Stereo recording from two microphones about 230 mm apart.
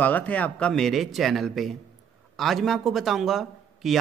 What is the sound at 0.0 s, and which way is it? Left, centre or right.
Speech, centre.